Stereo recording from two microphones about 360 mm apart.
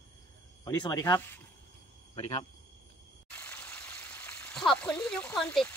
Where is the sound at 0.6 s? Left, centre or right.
Centre.